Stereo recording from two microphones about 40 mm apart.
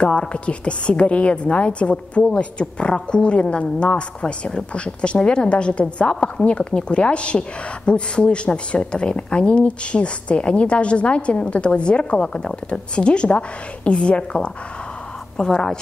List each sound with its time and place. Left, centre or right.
0.3 s a woman's voice: left